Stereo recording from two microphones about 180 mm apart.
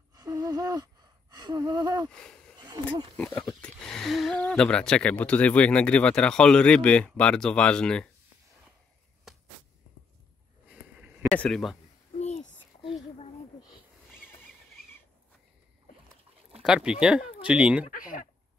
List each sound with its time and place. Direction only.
0.1 s gasp: 20° right (ahead or behind)
2.0 s speech: 5° left (ahead or behind)
2.6 s speech: 25° right (ahead or behind)
3.2 s speech: 10° left (ahead or behind)
10.7 s a sound: 10° right (ahead or behind)
11.2 s speech: 5° left (ahead or behind)
12.2 s a sound: 40° left (ahead or behind)
16.6 s speech: 5° right (ahead or behind)
17.8 s speech: 50° left (ahead or behind)